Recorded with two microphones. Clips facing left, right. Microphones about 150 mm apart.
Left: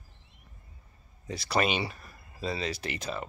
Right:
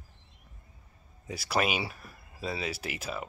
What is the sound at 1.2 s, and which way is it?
Speech, 5° right (ahead or behind).